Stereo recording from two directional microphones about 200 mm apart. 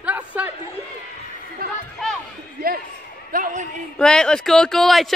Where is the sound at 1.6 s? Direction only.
50° right (ahead or behind).